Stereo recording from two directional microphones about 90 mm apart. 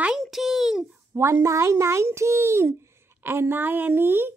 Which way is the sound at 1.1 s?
30° right (ahead or behind).